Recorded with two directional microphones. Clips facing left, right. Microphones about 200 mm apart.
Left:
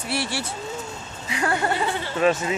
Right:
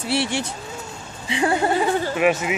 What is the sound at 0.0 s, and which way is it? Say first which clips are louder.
Speech: right 4 dB; 25° right (ahead or behind).